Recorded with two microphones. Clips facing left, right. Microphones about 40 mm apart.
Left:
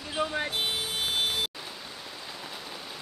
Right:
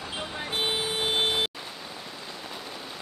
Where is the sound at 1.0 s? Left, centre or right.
Right.